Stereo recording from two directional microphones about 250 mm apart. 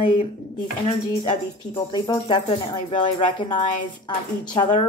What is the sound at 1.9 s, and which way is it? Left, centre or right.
Speech, centre.